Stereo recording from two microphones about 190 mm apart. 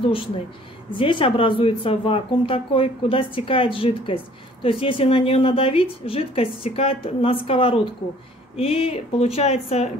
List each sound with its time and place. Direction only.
0.9 s speech: 25° left (ahead or behind)